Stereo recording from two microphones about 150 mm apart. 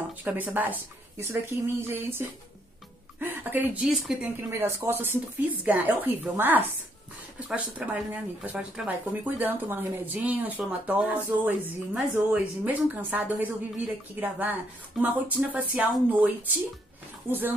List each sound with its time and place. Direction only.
0.2 s speech: 10° right (ahead or behind)
4.5 s speech: 15° right (ahead or behind)